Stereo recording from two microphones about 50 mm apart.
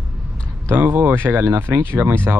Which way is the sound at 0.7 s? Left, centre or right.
Right.